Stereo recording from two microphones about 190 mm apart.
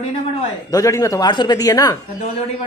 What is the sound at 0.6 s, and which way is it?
Speech, 20° left (ahead or behind).